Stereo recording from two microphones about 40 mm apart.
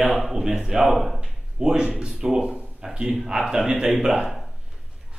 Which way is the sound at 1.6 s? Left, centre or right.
Centre.